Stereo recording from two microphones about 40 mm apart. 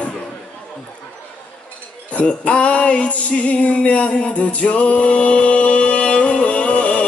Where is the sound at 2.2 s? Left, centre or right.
Left.